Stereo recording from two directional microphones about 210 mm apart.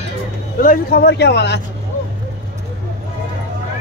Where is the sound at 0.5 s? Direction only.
40° left (ahead or behind).